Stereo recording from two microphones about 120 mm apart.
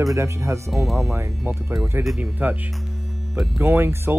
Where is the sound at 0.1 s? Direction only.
25° right (ahead or behind).